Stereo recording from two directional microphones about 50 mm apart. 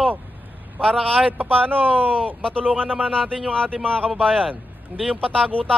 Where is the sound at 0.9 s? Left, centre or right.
Centre.